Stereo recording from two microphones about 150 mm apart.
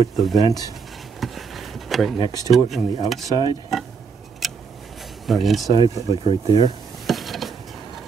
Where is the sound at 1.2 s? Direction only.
Centre (ahead or behind).